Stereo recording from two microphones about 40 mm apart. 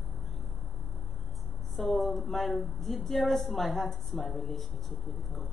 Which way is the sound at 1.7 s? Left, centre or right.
Centre.